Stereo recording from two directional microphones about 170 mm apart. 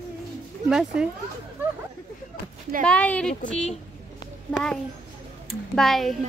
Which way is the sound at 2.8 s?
5° left (ahead or behind).